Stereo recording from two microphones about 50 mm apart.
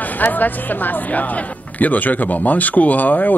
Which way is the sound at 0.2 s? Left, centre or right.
Left.